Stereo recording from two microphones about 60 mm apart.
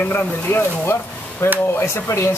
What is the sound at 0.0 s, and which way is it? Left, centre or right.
Speech, left.